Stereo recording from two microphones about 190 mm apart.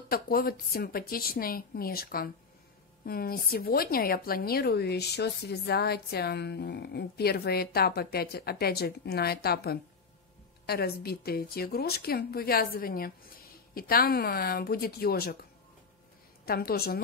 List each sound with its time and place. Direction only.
0.1 s a woman's voice: 50° left (ahead or behind)
16.4 s a woman's voice: 55° left (ahead or behind)